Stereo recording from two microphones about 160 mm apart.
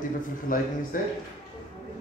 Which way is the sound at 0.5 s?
60° left (ahead or behind).